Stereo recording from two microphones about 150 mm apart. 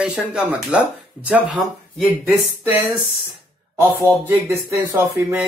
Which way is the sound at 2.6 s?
15° right (ahead or behind).